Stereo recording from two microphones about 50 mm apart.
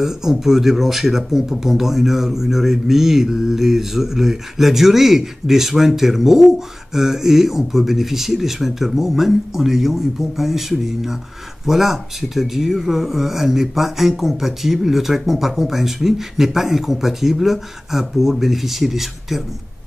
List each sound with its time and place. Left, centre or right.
0.0 s speech: centre